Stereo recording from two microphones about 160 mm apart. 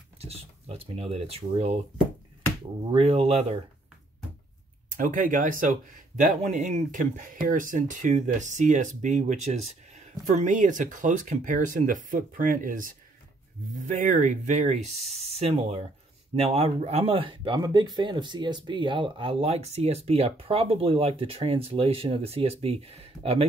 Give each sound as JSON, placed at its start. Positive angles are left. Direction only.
{"t": 0.2, "sound": "speech", "side_deg": -40}
{"t": 2.9, "sound": "speech", "side_deg": -40}
{"t": 4.9, "sound": "speech", "side_deg": -55}